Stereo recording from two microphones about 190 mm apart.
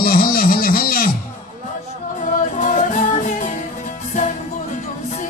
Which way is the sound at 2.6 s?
40° left (ahead or behind).